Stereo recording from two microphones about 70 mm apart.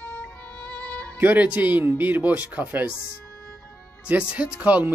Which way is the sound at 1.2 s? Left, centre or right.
Right.